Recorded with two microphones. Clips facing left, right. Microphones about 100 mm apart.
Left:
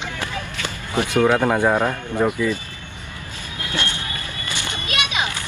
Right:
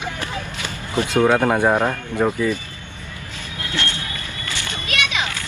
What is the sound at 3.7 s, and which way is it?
Music, 15° left (ahead or behind).